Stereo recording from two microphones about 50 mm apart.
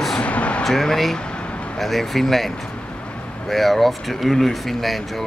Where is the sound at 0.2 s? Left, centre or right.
Left.